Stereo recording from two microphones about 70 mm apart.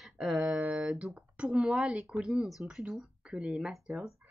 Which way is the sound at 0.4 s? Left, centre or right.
Right.